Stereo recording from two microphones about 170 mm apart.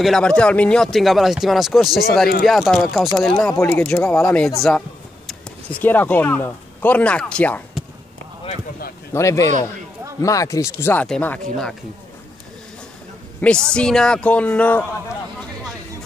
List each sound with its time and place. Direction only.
0.0 s speech: 5° left (ahead or behind)
3.5 s speech: 15° left (ahead or behind)
9.1 s speech: 15° left (ahead or behind)
13.4 s a woman's voice: 5° left (ahead or behind)